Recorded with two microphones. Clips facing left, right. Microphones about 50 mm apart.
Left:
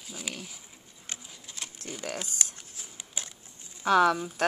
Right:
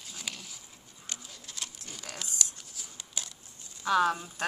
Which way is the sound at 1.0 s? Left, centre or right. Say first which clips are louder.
Even; left.